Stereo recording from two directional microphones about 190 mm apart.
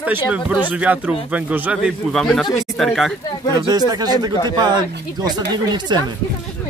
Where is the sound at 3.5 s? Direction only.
20° right (ahead or behind).